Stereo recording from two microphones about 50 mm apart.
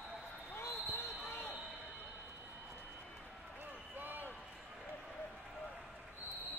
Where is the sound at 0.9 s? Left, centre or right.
Left.